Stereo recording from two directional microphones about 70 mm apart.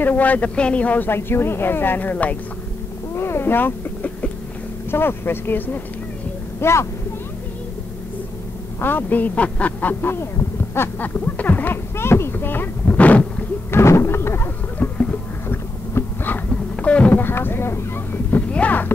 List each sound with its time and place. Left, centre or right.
0.0 s speech: left
3.2 s speech: left
4.9 s music: left
6.6 s music: left
8.8 s speech: left
10.1 s speech: left
11.1 s speech: left
13.7 s music: left
15.5 s a sound: left
16.4 s a sound: centre
17.2 s a sound: left
18.5 s music: left